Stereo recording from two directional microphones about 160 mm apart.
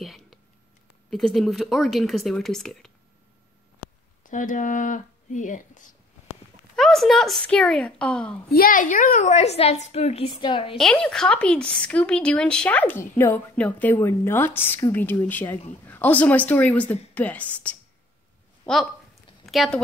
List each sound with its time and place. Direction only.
0.0 s a sound: centre (ahead or behind)
1.1 s speech: centre (ahead or behind)
4.2 s speech: 55° left (ahead or behind)
6.8 s speech: centre (ahead or behind)
8.5 s a woman's voice: 65° left (ahead or behind); by 10.8 s 30° left (ahead or behind)
10.8 s speech: 5° left (ahead or behind)
19.4 s a woman's voice: centre (ahead or behind)